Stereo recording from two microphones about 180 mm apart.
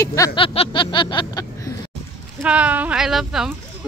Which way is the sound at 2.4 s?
5° right (ahead or behind).